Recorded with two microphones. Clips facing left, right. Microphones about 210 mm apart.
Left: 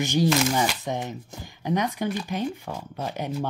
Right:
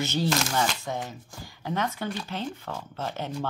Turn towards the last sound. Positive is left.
turn(degrees=15)  # may be behind; listen again after turning